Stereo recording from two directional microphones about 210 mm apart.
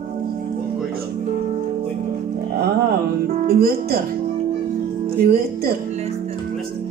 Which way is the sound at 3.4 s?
45° right (ahead or behind).